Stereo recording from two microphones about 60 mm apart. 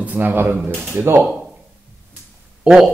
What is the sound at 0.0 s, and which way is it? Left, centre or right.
Speech, right.